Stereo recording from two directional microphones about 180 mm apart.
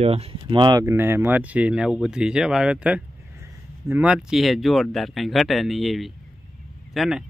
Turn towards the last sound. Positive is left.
turn(degrees=0)  # may be behind; listen again after turning